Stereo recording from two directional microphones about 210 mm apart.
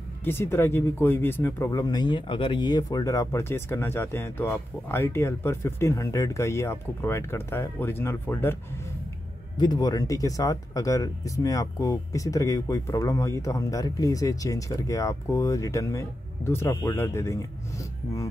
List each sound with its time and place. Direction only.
0.2 s speech: 10° left (ahead or behind)
9.6 s speech: 20° left (ahead or behind)